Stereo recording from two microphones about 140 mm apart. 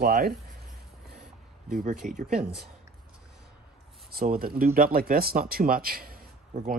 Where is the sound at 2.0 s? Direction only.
70° right (ahead or behind).